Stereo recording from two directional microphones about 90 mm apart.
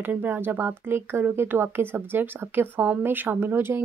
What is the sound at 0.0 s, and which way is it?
Speech, 20° right (ahead or behind).